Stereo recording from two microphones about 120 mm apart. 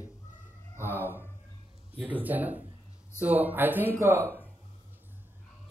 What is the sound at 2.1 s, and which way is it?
A man's voice, 15° right (ahead or behind).